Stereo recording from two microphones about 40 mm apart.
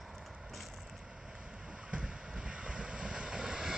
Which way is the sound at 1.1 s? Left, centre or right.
Right.